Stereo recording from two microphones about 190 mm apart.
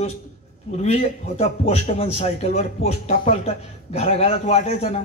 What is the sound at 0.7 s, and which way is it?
A man's voice, 35° left (ahead or behind).